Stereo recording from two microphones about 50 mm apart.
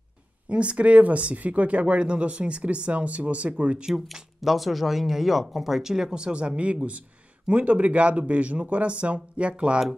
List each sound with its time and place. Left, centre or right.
0.5 s speech: right
3.9 s speech: centre; by 9.8 s right